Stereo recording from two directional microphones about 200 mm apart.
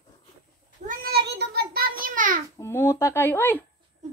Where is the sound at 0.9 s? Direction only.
50° right (ahead or behind).